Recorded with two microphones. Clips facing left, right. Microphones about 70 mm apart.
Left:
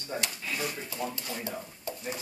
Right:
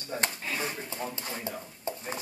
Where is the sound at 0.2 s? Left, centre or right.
Right.